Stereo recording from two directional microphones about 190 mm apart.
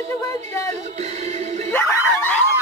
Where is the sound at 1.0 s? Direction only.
35° right (ahead or behind).